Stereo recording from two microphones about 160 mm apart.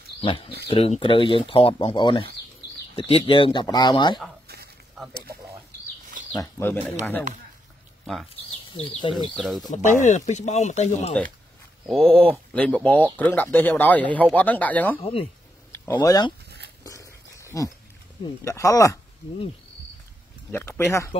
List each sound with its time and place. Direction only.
0.2 s speech: 35° left (ahead or behind)
6.3 s speech: 20° left (ahead or behind)
8.7 s speech: 35° left (ahead or behind)
9.4 s speech: centre (ahead or behind)
9.7 s speech: 50° left (ahead or behind)
11.9 s speech: 5° left (ahead or behind)
15.0 s speech: 35° left (ahead or behind)
15.7 s speech: 15° left (ahead or behind)
16.4 s a sound: 90° right
16.8 s a sound: 20° left (ahead or behind)
18.4 s speech: 20° left (ahead or behind)
20.5 s speech: 15° left (ahead or behind)